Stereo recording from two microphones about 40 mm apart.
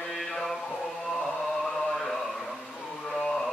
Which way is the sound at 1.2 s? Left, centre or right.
Centre.